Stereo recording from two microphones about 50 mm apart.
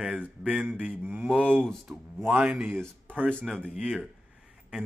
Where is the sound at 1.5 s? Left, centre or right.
Centre.